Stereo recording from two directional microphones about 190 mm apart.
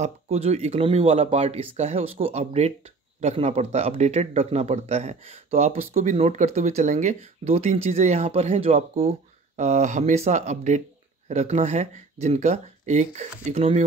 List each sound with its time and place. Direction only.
0.0 s speech: 35° right (ahead or behind)